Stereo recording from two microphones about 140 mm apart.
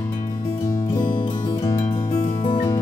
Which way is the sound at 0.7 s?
30° left (ahead or behind).